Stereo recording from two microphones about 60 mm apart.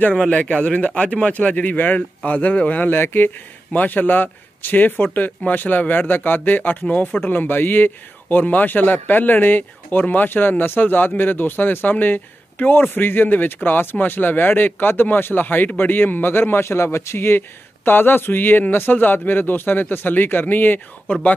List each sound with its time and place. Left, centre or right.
0.3 s speech: left